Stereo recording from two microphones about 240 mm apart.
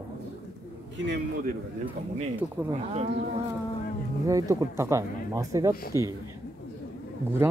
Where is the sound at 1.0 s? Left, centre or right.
Right.